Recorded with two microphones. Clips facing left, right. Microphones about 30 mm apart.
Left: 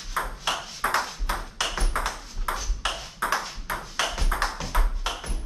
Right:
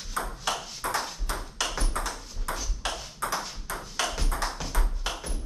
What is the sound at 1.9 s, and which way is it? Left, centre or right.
Ping, left.